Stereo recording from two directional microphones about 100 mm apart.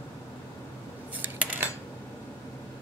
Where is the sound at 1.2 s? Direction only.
20° right (ahead or behind).